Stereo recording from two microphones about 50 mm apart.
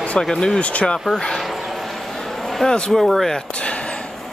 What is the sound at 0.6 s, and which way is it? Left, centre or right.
Speech, left.